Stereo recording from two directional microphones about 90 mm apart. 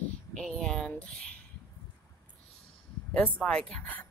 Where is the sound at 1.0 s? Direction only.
10° left (ahead or behind).